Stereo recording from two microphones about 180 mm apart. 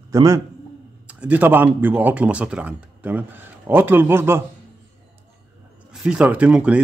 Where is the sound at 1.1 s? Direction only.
10° right (ahead or behind).